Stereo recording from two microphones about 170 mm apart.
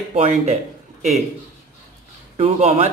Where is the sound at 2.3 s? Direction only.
40° right (ahead or behind).